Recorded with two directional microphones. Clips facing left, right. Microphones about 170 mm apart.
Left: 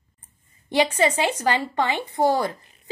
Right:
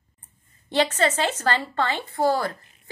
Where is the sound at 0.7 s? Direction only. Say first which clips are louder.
Left 2 dB; 10° left (ahead or behind).